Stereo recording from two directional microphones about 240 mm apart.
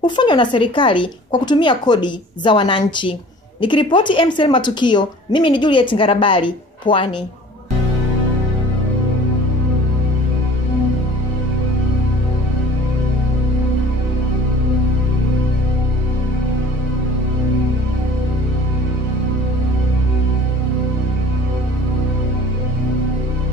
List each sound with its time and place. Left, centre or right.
0.0 s a woman's voice: centre